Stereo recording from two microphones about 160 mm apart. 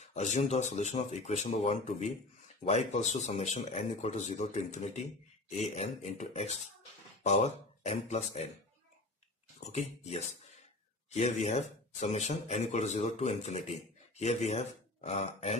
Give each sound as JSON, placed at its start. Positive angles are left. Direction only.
{"t": 0.1, "sound": "speech", "side_deg": 45}
{"t": 9.7, "sound": "speech", "side_deg": 40}